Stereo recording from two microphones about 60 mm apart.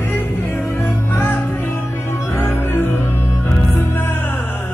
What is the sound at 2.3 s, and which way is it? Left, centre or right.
Music, left.